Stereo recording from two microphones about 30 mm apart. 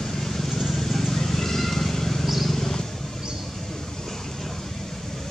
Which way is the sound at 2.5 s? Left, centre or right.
Centre.